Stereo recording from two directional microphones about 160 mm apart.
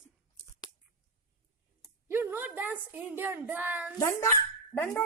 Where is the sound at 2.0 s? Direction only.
15° right (ahead or behind).